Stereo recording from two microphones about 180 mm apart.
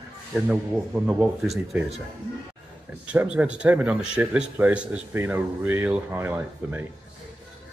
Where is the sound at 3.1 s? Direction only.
5° right (ahead or behind).